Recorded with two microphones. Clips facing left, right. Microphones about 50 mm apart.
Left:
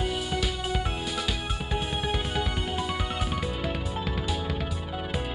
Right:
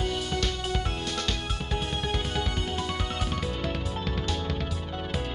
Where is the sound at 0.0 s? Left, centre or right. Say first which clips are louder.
Even; centre.